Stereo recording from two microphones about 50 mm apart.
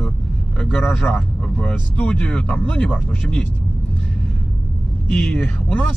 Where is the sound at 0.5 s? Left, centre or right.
Centre.